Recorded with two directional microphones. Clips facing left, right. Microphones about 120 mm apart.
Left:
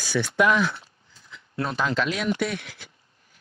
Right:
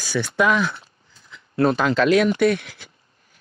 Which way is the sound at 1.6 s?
75° right (ahead or behind).